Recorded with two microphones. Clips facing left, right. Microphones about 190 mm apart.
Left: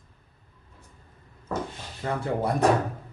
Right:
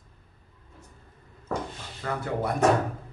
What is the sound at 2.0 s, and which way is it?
Speech, 30° left (ahead or behind).